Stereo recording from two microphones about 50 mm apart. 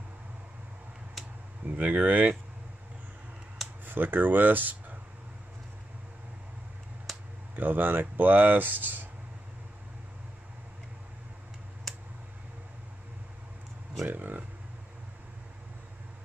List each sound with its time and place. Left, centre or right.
1.7 s speech: right
3.8 s speech: right
7.5 s speech: right
11.9 s a sound: centre
14.0 s speech: right